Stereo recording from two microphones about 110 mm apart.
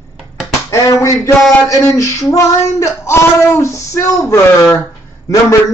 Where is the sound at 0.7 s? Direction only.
30° left (ahead or behind).